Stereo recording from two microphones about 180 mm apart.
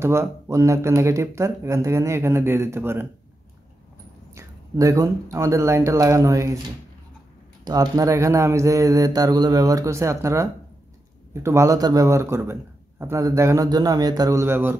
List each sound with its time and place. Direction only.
0.0 s speech: 15° right (ahead or behind)
4.4 s speech: 20° right (ahead or behind)
7.6 s speech: 20° right (ahead or behind)